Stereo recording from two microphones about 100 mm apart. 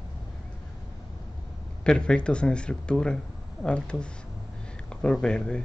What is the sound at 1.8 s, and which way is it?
Speech, 10° left (ahead or behind).